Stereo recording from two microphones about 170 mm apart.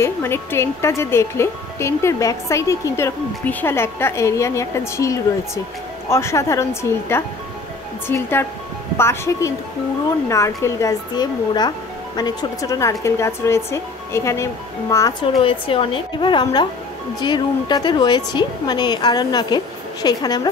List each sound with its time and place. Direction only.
0.0 s speech: 15° left (ahead or behind)
15.4 s speech: 30° left (ahead or behind)